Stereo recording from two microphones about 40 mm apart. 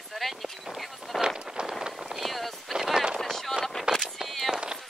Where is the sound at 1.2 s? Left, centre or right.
Right.